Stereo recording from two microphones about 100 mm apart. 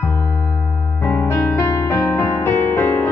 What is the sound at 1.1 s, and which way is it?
Music, 20° left (ahead or behind).